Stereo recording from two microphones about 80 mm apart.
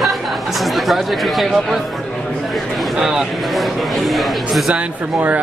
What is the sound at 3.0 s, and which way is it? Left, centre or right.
Speech, centre.